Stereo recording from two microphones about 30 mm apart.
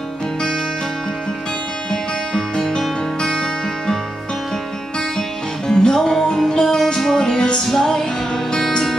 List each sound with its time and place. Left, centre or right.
1.9 s music: left
5.7 s music: left